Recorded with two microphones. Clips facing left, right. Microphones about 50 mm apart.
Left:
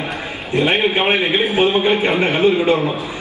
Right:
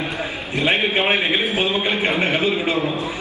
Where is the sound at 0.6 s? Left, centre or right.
Left.